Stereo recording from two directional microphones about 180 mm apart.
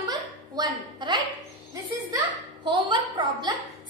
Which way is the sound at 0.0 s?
20° right (ahead or behind).